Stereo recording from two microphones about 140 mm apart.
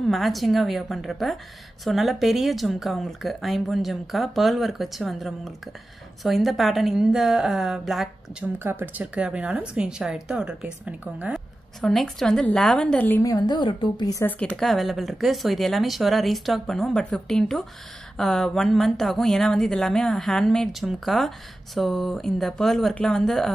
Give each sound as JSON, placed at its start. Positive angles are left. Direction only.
{"t": 0.1, "sound": "speech", "side_deg": 0}
{"t": 8.6, "sound": "speech", "side_deg": -15}
{"t": 11.8, "sound": "speech", "side_deg": 5}
{"t": 13.2, "sound": "a woman's voice", "side_deg": 30}
{"t": 14.2, "sound": "speech", "side_deg": 10}